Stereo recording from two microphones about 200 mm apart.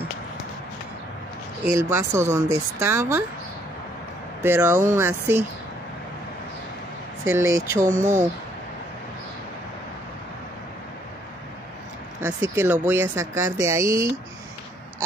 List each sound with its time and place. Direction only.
1.6 s speech: 15° right (ahead or behind)
4.4 s speech: 10° right (ahead or behind)
7.6 s speech: 15° right (ahead or behind)
12.2 s speech: 10° right (ahead or behind)